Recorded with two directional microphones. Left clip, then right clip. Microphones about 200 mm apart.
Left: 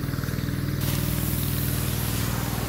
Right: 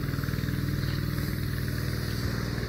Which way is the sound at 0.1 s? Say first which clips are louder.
Left 2 dB; 20° right (ahead or behind).